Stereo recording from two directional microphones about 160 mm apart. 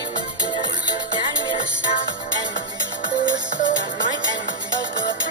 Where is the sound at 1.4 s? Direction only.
25° right (ahead or behind).